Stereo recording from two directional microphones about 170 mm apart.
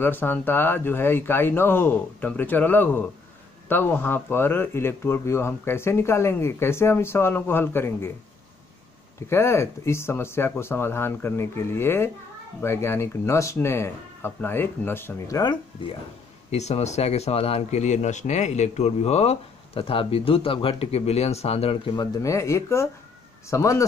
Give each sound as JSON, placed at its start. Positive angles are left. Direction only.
{"t": 0.0, "sound": "speech", "side_deg": 10}
{"t": 9.3, "sound": "speech", "side_deg": 15}
{"t": 16.4, "sound": "speech", "side_deg": 40}